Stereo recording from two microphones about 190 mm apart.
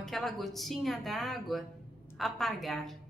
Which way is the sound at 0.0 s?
Centre (ahead or behind).